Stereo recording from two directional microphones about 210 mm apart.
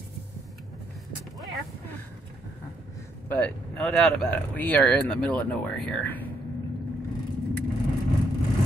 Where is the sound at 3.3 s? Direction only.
5° left (ahead or behind).